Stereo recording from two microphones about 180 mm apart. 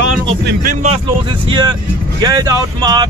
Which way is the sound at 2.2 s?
20° right (ahead or behind).